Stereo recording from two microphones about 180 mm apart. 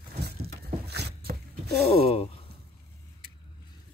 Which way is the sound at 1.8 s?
35° left (ahead or behind).